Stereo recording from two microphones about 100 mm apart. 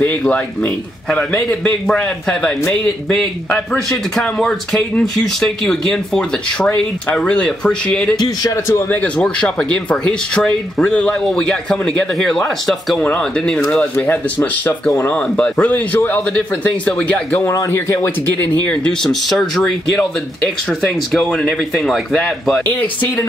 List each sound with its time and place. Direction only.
0.0 s speech: 15° left (ahead or behind)
8.2 s a man's voice: 35° left (ahead or behind)
8.9 s speech: 15° left (ahead or behind)
13.9 s speech: 20° left (ahead or behind)
17.4 s speech: 30° left (ahead or behind)
18.4 s speech: 10° left (ahead or behind)